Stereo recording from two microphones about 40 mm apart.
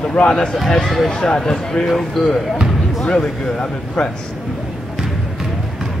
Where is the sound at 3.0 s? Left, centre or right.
Left.